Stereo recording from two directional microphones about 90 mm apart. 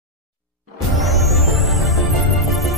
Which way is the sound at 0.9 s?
Centre (ahead or behind).